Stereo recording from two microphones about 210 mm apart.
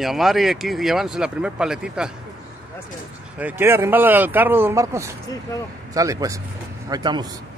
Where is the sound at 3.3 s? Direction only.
10° right (ahead or behind).